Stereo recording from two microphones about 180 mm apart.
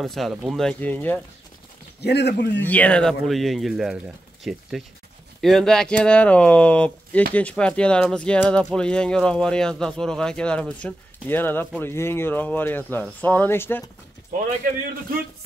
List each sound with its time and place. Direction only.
0.0 s speech: centre (ahead or behind)
2.0 s a man's voice: 65° left (ahead or behind)
2.6 s speech: 10° left (ahead or behind)